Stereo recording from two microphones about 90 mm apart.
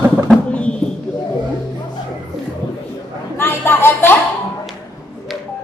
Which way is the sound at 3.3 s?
25° left (ahead or behind).